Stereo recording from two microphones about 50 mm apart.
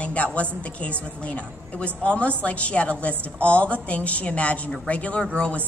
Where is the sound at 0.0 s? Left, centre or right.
Left.